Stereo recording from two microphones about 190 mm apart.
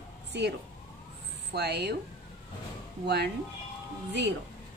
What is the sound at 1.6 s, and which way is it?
Speech, 60° right (ahead or behind).